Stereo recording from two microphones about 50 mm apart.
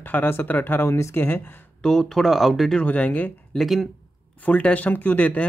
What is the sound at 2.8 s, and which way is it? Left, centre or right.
Speech, left.